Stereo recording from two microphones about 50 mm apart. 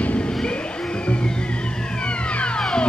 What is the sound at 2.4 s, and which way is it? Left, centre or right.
Car alarm, centre.